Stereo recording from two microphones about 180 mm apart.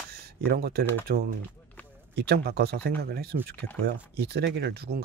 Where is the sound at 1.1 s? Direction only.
60° right (ahead or behind).